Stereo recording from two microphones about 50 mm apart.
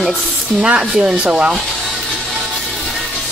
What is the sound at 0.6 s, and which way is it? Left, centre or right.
Speech, right.